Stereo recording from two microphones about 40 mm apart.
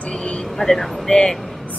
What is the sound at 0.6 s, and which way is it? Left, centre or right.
Speech, centre.